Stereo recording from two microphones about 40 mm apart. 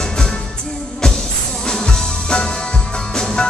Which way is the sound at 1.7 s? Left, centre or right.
Centre.